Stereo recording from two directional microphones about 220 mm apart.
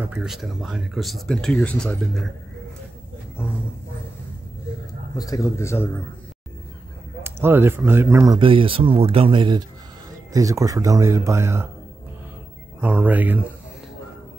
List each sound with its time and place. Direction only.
0.0 s speech: 5° right (ahead or behind)
5.1 s a man's voice: 15° left (ahead or behind)
7.2 s speech: 10° right (ahead or behind)
12.8 s speech: 5° right (ahead or behind)